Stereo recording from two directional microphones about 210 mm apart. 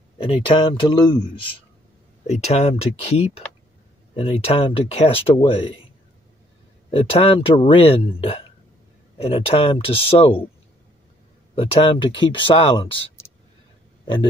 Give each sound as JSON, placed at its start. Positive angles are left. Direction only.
{"t": 0.2, "sound": "speech", "side_deg": 25}
{"t": 2.2, "sound": "speech", "side_deg": 30}
{"t": 6.9, "sound": "speech", "side_deg": 30}
{"t": 11.5, "sound": "speech", "side_deg": 25}